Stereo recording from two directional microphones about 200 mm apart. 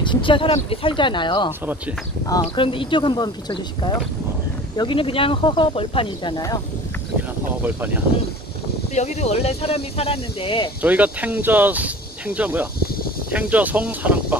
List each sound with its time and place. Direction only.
0.0 s speech: 25° left (ahead or behind)
7.6 s speech: 10° right (ahead or behind)
8.9 s speech: 35° left (ahead or behind)
10.8 s speech: 5° right (ahead or behind)